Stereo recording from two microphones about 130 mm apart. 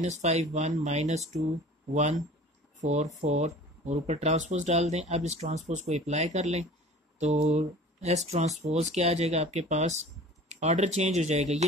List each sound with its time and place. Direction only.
0.0 s speech: 60° right (ahead or behind)
2.8 s speech: 60° right (ahead or behind)